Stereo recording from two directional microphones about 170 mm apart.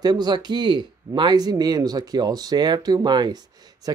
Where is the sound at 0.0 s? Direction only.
25° right (ahead or behind).